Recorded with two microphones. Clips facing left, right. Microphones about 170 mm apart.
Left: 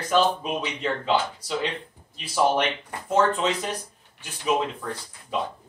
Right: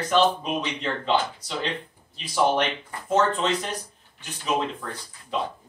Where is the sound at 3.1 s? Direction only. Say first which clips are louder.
Even; 10° left (ahead or behind).